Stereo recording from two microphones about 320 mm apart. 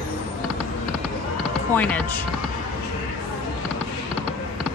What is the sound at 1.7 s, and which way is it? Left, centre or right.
Speech, centre.